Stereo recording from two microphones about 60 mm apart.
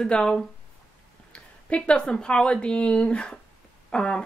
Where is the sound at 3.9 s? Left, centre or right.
Centre.